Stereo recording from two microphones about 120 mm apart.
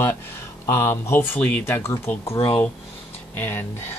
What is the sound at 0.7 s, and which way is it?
Speech, 20° left (ahead or behind).